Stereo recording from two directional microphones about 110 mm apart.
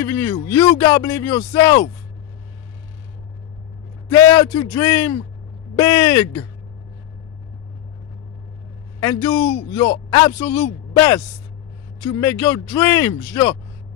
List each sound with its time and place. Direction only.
0.0 s speech: 35° left (ahead or behind)
4.1 s speech: 40° left (ahead or behind)
9.0 s a man's voice: 40° left (ahead or behind)